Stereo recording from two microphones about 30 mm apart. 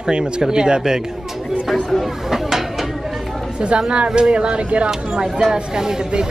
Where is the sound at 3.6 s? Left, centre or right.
Right.